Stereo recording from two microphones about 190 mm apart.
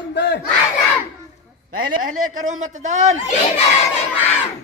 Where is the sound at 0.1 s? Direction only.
60° left (ahead or behind).